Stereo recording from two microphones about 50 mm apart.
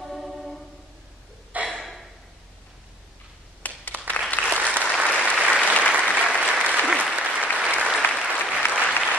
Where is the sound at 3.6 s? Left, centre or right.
Left.